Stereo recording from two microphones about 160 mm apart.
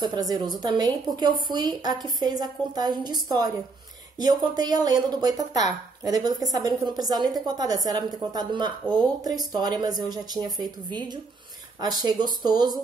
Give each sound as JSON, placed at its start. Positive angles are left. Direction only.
{"t": 0.0, "sound": "speech", "side_deg": -25}